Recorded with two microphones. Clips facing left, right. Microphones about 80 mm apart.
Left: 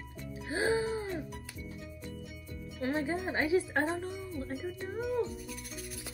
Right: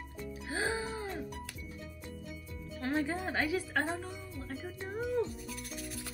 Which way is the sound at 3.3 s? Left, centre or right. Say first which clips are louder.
Left 3 dB; left.